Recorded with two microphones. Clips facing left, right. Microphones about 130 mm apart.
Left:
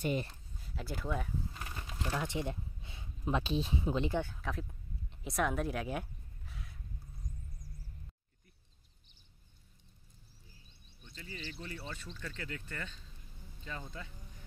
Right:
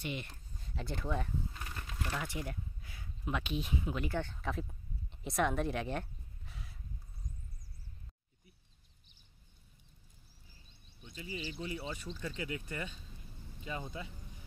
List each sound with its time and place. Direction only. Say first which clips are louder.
0.0 s speech: left 6 dB; 40° left (ahead or behind)
0.6 s a sound: even; 5° left (ahead or behind)
2.0 s speech: left 3 dB; 15° left (ahead or behind)
4.2 s speech: even; 5° left (ahead or behind)
11.1 s speech: right 4 dB; 10° right (ahead or behind)